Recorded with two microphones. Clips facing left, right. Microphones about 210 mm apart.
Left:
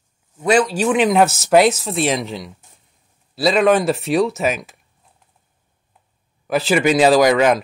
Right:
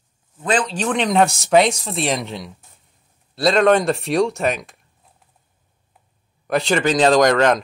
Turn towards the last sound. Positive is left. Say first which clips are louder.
# left 1 dB
turn(degrees=5)  # may be behind; listen again after turning